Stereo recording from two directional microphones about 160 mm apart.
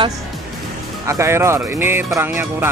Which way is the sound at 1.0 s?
15° right (ahead or behind).